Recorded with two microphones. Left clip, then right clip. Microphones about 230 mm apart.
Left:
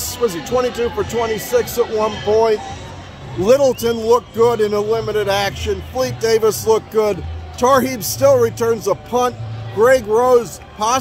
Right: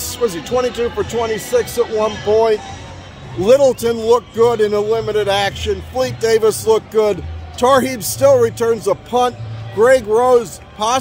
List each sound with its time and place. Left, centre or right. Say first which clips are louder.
0.1 s a man's voice: right 1 dB; centre